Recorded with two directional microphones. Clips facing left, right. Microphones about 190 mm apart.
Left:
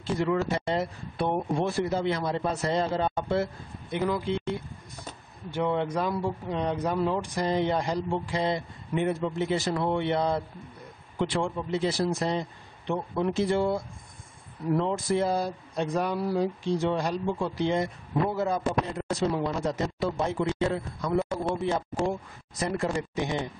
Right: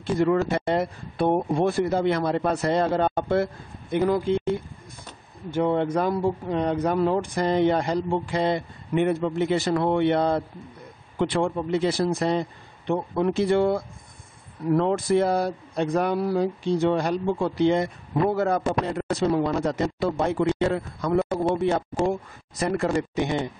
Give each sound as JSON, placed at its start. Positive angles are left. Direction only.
{"t": 0.0, "sound": "speech", "side_deg": -50}
{"t": 5.5, "sound": "speech", "side_deg": -45}